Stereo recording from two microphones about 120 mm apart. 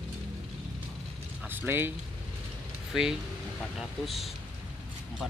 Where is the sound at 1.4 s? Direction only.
20° right (ahead or behind).